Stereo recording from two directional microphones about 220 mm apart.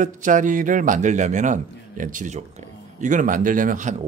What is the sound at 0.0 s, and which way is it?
Speech, 35° right (ahead or behind).